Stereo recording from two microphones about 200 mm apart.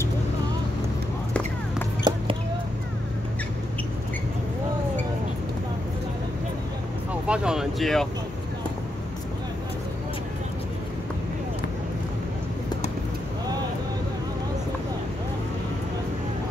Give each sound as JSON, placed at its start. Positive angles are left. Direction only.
{"t": 2.1, "sound": "basketball bounce", "side_deg": -20}
{"t": 7.2, "sound": "speech", "side_deg": -5}